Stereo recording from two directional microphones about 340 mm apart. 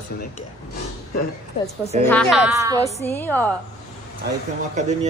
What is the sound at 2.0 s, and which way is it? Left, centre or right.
Speech, centre.